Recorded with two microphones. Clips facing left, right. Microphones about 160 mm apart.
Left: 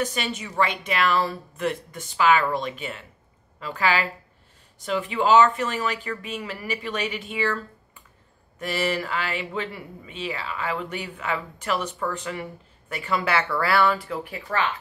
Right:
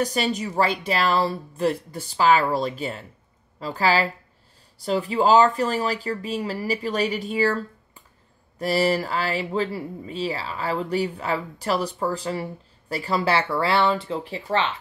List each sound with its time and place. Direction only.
0.0 s speech: 40° right (ahead or behind)